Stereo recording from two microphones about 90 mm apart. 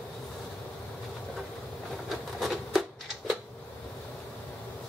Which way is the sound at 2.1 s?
Centre (ahead or behind).